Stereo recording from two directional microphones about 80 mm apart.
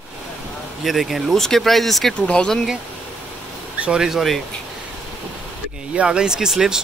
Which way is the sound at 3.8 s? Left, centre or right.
Centre.